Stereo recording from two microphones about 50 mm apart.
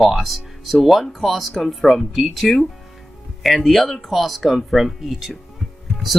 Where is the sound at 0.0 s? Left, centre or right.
Centre.